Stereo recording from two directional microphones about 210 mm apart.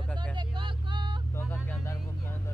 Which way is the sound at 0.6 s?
20° right (ahead or behind).